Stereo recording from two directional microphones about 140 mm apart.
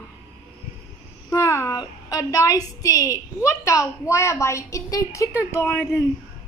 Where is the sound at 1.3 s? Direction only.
20° left (ahead or behind).